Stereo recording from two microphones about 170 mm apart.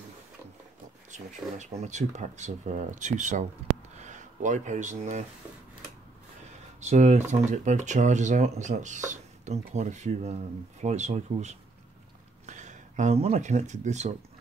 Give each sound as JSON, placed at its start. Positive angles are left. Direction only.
{"t": 1.1, "sound": "speech", "side_deg": -45}
{"t": 3.9, "sound": "a sound", "side_deg": -45}
{"t": 6.8, "sound": "speech", "side_deg": -45}